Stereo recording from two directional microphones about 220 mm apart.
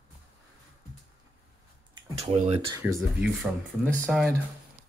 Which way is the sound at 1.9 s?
30° right (ahead or behind).